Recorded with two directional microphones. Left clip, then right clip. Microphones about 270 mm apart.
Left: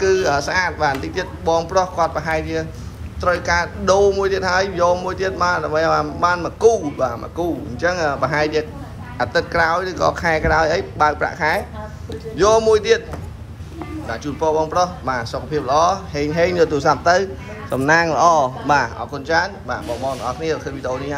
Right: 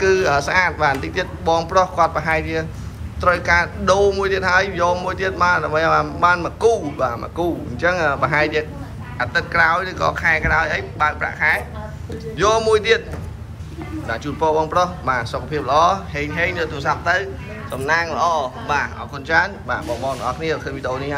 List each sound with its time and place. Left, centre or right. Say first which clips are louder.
0.0 s a man's voice: right 1 dB; centre
14.0 s a man's voice: right 1 dB; centre